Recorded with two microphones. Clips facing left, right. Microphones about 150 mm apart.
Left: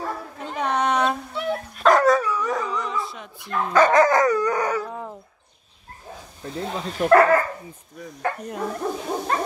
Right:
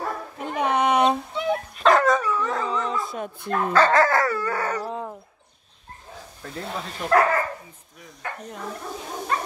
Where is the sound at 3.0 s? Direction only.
50° right (ahead or behind).